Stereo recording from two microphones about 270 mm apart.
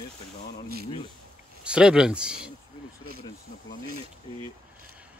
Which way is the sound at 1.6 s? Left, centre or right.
Centre.